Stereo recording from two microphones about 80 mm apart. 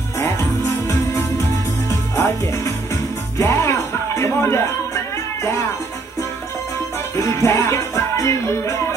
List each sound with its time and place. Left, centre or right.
0.2 s music: left
7.2 s music: left